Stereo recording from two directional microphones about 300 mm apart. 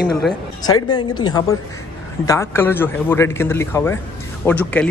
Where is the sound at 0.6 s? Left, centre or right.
Centre.